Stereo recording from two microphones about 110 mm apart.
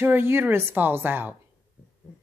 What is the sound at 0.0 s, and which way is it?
Speech, 20° right (ahead or behind).